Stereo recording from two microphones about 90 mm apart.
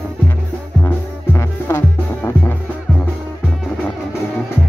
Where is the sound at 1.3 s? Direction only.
30° left (ahead or behind).